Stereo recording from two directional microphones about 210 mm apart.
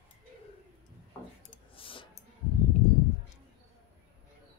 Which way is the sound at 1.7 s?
25° left (ahead or behind).